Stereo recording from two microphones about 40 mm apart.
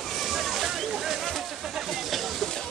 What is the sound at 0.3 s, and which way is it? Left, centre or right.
Slosh, centre.